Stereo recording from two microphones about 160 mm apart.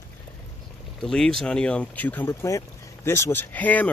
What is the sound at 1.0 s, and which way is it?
Speech, 5° left (ahead or behind).